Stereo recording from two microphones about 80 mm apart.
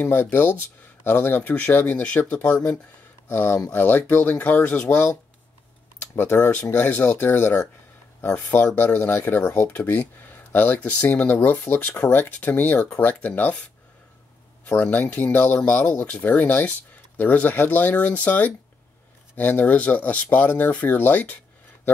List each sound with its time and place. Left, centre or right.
0.0 s speech: left
6.3 s speech: left
14.7 s speech: left